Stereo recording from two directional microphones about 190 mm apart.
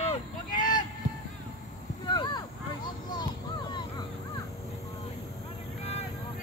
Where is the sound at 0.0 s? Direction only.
40° left (ahead or behind).